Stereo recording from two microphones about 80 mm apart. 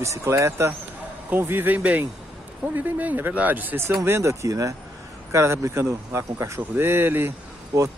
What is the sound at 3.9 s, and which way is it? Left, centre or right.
Speech, right.